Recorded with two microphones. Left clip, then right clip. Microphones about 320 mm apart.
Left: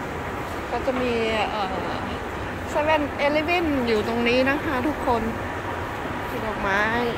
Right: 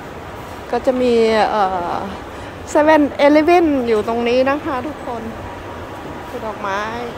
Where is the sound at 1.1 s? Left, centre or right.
Centre.